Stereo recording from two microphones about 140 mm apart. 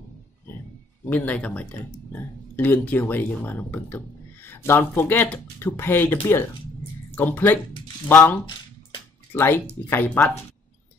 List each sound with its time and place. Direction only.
1.0 s speech: 10° left (ahead or behind)
10.0 s speech: 5° left (ahead or behind)